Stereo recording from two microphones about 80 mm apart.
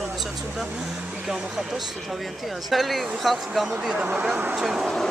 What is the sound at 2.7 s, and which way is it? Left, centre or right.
Speech, centre.